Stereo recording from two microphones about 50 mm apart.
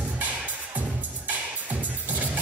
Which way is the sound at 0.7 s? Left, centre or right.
Right.